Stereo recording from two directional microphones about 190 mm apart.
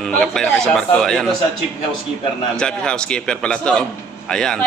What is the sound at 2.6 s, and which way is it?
A man's voice, 5° left (ahead or behind).